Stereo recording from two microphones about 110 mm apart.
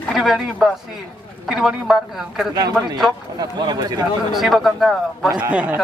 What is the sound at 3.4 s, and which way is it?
Speech, 40° right (ahead or behind).